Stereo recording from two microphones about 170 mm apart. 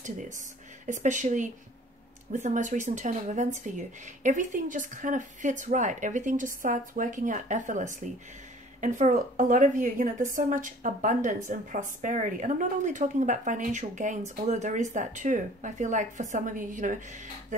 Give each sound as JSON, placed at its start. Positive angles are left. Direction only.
{"t": 0.8, "sound": "a woman's voice", "side_deg": -45}